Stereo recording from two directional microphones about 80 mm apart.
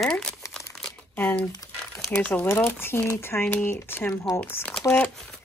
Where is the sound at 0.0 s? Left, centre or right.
Centre.